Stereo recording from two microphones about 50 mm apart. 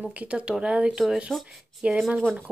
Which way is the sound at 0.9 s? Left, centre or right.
Centre.